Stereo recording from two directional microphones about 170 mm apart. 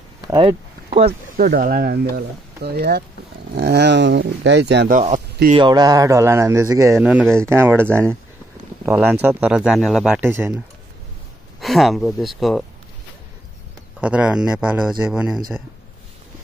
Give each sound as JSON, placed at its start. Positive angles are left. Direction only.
{"t": 0.3, "sound": "a sound", "side_deg": -30}
{"t": 1.3, "sound": "speech", "side_deg": -60}
{"t": 5.5, "sound": "speech", "side_deg": -25}
{"t": 7.0, "sound": "speech", "side_deg": -5}
{"t": 10.2, "sound": "speech", "side_deg": -15}
{"t": 11.6, "sound": "speech", "side_deg": 0}
{"t": 14.0, "sound": "speech", "side_deg": -5}